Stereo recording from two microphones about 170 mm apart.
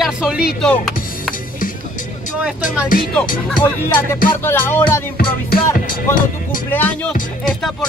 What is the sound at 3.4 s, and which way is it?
Speech, 10° left (ahead or behind).